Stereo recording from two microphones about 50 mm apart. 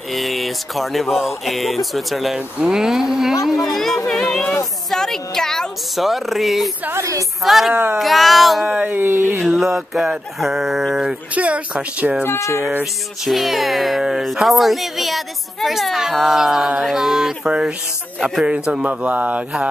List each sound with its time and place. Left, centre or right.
0.1 s a child's voice: centre
2.3 s speech: centre
3.5 s speech: centre
4.1 s a sound: centre
5.9 s a child's voice: centre
7.0 s speech: right
7.4 s a child's voice: centre
7.7 s speech: right
8.0 s a child's voice: centre
8.6 s speech: right
9.9 s a child's voice: centre
11.3 s speech: right
13.2 s a child's voice: centre; by 18.9 s right
18.9 s speech: right